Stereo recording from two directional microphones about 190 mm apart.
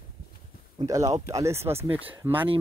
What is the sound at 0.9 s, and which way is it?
Speech, 15° right (ahead or behind).